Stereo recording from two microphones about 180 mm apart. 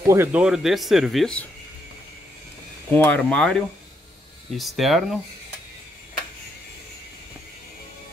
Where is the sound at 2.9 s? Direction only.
10° left (ahead or behind).